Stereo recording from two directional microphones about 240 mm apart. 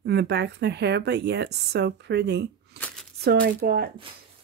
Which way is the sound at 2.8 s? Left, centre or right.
Right.